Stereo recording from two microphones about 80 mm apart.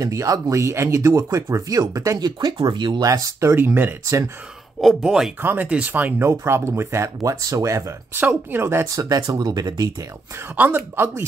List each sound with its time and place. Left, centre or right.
0.0 s speech: right
2.1 s speech: right
3.0 s speech: right
3.5 s speech: right
4.0 s speech: right
4.7 s speech: centre
5.4 s speech: right
6.2 s speech: right
7.2 s speech: right
8.1 s speech: right
8.8 s speech: right
10.5 s speech: right